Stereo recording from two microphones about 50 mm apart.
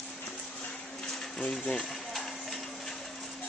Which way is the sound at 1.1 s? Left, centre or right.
Centre.